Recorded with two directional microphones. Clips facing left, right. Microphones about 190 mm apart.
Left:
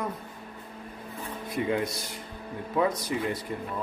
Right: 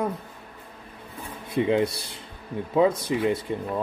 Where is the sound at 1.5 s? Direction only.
25° right (ahead or behind).